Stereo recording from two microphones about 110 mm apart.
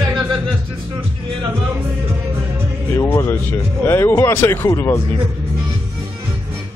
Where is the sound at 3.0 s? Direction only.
25° left (ahead or behind).